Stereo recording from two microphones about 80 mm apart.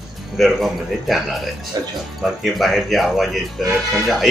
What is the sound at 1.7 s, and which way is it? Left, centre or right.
Speech, right.